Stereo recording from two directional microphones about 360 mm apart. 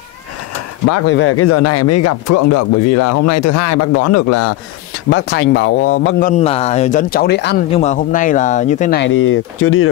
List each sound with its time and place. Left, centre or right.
0.8 s speech: left
5.1 s speech: left